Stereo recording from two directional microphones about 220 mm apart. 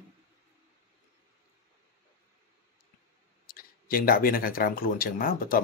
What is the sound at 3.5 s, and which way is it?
Speech, 40° left (ahead or behind).